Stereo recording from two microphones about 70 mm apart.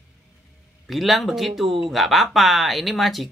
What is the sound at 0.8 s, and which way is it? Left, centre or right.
Speech, centre.